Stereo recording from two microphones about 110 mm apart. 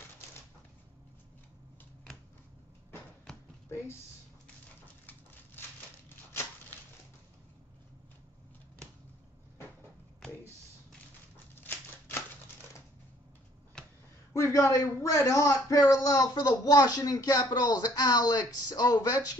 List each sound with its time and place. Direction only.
14.3 s speech: 30° left (ahead or behind)